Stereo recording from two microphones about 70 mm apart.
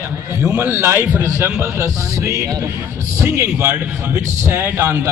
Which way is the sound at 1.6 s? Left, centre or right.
Right.